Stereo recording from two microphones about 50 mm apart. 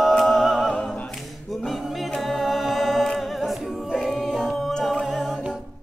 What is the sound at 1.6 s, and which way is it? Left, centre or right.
A capella, centre.